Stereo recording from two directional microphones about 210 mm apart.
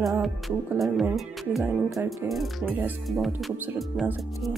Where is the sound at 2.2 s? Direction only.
Centre (ahead or behind).